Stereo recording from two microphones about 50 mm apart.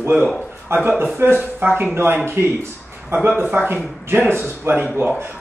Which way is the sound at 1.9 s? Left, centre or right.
Right.